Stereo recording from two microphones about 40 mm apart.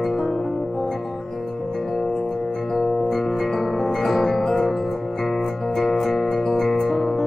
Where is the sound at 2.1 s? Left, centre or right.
Centre.